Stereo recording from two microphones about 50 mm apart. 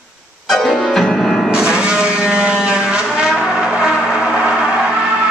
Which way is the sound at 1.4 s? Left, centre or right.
Centre.